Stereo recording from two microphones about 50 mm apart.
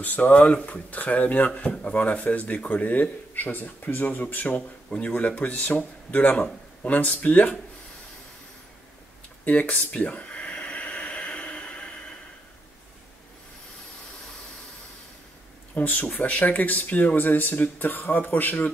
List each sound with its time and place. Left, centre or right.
0.0 s speech: left
9.4 s a sound: left
15.7 s speech: left